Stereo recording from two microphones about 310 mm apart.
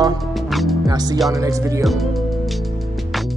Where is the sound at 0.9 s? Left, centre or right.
Centre.